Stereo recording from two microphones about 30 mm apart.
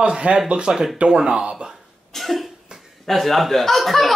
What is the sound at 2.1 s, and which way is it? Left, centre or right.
Speech, centre.